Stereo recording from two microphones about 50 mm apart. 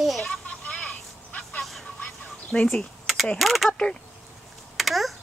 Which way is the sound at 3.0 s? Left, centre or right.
Centre.